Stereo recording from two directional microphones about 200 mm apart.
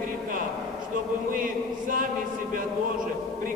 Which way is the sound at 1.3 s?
45° right (ahead or behind).